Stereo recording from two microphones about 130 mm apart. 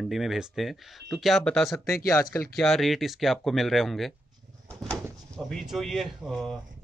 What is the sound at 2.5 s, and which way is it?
Speech, centre (ahead or behind).